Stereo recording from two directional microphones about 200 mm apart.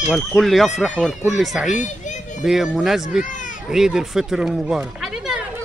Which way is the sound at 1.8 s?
35° left (ahead or behind).